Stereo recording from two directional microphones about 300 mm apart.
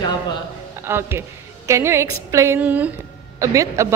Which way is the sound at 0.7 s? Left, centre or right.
Centre.